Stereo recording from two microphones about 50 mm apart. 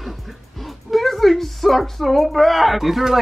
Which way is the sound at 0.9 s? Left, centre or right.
Centre.